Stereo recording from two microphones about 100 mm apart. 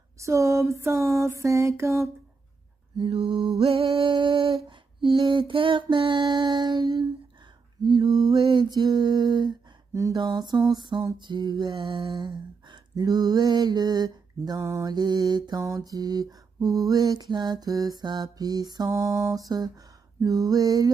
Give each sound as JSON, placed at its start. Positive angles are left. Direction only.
{"t": 0.2, "sound": "mantra", "side_deg": -30}
{"t": 3.0, "sound": "a sound", "side_deg": -65}
{"t": 4.6, "sound": "mantra", "side_deg": -55}
{"t": 7.8, "sound": "lullaby", "side_deg": -50}
{"t": 8.4, "sound": "mantra", "side_deg": -55}
{"t": 9.9, "sound": "mantra", "side_deg": -30}
{"t": 10.2, "sound": "mantra", "side_deg": -45}
{"t": 15.6, "sound": "mantra", "side_deg": -35}
{"t": 18.9, "sound": "mantra", "side_deg": -30}